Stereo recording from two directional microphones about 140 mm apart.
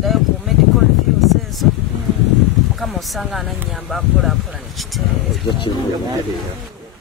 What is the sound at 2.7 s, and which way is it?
Speech, centre (ahead or behind).